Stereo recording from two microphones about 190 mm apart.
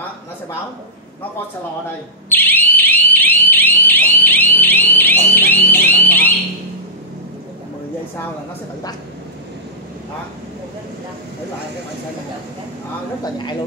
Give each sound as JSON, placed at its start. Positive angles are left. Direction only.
{"t": 2.2, "sound": "fire alarm", "side_deg": 10}
{"t": 13.2, "sound": "speech", "side_deg": 25}